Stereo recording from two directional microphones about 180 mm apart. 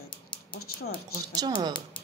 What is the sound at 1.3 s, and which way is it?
Speech, 25° right (ahead or behind).